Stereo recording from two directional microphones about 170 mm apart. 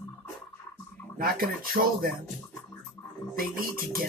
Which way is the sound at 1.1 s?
60° right (ahead or behind).